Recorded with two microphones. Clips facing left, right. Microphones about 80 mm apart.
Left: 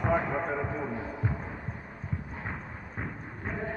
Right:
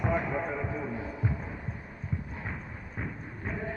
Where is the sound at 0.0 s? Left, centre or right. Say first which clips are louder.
Left 2 dB; left.